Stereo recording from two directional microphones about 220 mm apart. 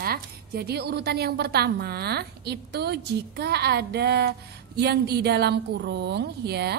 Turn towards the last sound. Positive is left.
turn(degrees=-50)  # may be behind; listen again after turning